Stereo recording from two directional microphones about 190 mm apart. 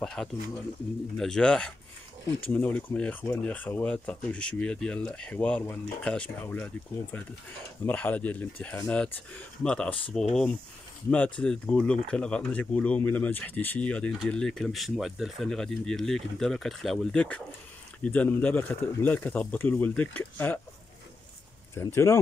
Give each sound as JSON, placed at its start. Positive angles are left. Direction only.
{"t": 0.0, "sound": "speech", "side_deg": 5}
{"t": 21.7, "sound": "speech", "side_deg": 15}